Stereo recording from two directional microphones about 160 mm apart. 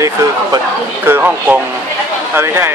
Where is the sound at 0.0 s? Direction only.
20° right (ahead or behind).